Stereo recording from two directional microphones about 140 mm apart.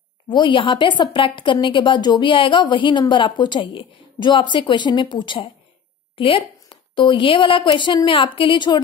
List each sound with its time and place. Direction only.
0.3 s a woman's voice: 35° left (ahead or behind)